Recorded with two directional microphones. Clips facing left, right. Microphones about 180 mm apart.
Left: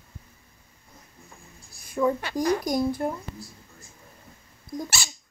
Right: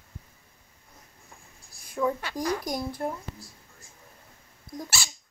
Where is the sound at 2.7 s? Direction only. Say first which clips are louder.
Left 6 dB; centre (ahead or behind).